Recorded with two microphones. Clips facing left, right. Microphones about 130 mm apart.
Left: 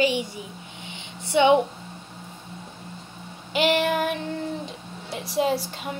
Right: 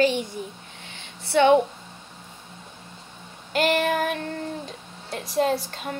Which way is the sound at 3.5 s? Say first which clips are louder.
Even; 5° left (ahead or behind).